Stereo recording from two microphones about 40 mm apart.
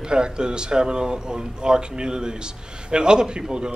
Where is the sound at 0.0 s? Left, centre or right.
Right.